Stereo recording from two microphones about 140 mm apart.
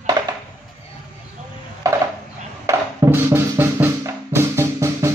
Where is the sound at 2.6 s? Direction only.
20° right (ahead or behind).